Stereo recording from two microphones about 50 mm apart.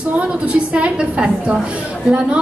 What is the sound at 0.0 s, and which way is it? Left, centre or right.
A woman's voice, right.